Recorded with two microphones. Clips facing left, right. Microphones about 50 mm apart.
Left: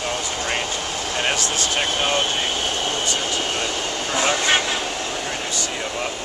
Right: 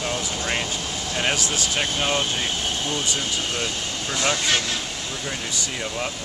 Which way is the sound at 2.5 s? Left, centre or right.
Left.